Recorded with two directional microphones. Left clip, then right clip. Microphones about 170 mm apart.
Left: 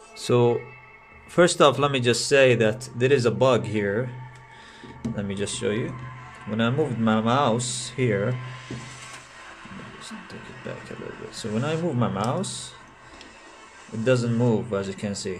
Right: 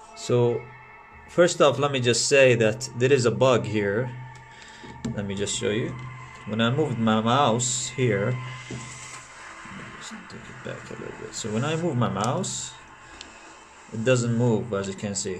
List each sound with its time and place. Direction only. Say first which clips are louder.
0.2 s speech: left 2 dB; 20° left (ahead or behind); by 4.1 s centre (ahead or behind)
5.1 s speech: right 1 dB; 5° left (ahead or behind)
10.6 s speech: even; centre (ahead or behind)
14.0 s speech: even; 5° left (ahead or behind)